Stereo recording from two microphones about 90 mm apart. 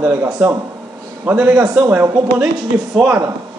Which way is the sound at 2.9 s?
10° right (ahead or behind).